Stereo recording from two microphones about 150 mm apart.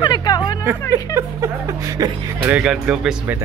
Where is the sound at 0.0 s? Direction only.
30° left (ahead or behind).